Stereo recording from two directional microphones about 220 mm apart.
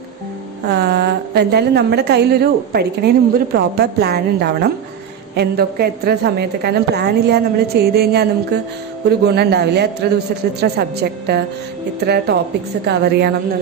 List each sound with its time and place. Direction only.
0.7 s a woman's voice: 50° right (ahead or behind)